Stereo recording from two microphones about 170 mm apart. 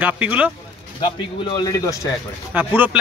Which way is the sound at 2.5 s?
10° right (ahead or behind).